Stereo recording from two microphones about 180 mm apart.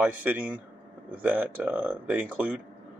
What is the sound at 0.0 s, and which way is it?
Speech, 10° right (ahead or behind).